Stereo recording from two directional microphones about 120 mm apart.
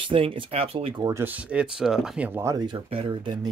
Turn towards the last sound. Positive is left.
turn(degrees=-40)  # may be behind; listen again after turning